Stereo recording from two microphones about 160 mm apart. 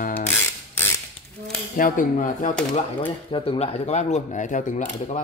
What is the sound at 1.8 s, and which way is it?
Speech, 55° left (ahead or behind).